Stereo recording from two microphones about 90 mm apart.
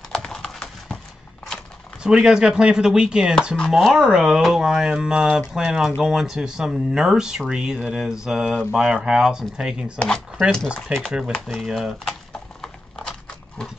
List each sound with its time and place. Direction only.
0.1 s clip-clop: 5° left (ahead or behind)
2.0 s speech: 5° right (ahead or behind)
9.9 s speech: 10° left (ahead or behind)
11.1 s speech: 10° right (ahead or behind)